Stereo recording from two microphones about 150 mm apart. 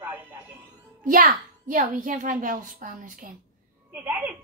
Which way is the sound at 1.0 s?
70° right (ahead or behind).